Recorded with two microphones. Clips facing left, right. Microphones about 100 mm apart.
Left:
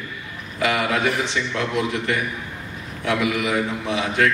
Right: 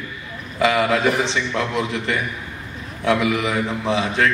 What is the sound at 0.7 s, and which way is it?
Speech, 30° right (ahead or behind).